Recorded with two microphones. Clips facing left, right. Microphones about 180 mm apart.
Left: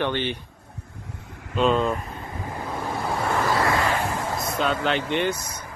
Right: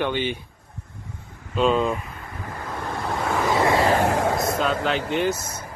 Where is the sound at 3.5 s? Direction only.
25° right (ahead or behind).